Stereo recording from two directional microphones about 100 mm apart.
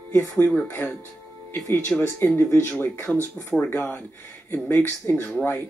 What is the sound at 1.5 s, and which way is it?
Speech, 20° left (ahead or behind).